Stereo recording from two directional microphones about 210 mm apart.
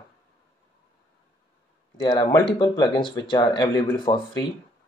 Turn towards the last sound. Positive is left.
turn(degrees=25)  # may be behind; listen again after turning